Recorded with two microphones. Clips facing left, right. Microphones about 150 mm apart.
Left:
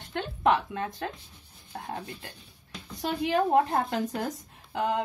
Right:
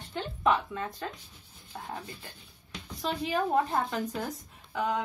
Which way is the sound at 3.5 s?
80° left.